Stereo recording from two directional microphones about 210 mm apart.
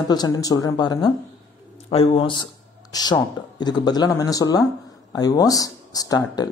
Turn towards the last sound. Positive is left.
turn(degrees=20)  # may be behind; listen again after turning